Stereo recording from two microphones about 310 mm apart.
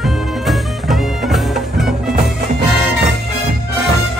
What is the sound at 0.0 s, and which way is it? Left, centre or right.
Music, centre.